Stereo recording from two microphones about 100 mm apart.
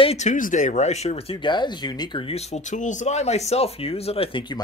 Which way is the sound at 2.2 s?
90° left.